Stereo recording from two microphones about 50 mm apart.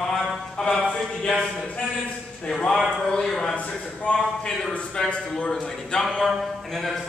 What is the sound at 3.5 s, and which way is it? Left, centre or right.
A man's voice, left.